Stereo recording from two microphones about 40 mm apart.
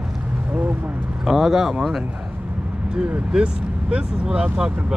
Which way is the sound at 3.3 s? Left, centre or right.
Right.